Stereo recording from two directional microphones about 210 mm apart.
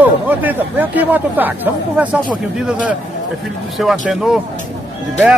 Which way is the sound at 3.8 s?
Centre (ahead or behind).